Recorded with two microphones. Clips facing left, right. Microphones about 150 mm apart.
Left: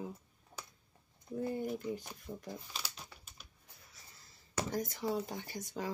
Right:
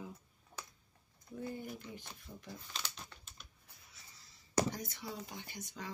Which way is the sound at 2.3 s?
55° left (ahead or behind).